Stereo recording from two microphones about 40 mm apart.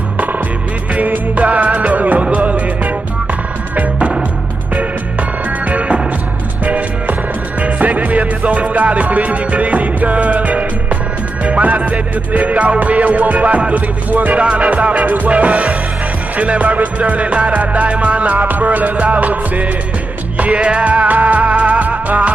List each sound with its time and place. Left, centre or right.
0.9 s music: right
5.7 s music: right
15.5 s music: centre
16.3 s music: right